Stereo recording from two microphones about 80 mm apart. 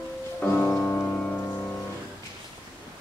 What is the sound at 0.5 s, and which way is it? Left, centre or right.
Music, centre.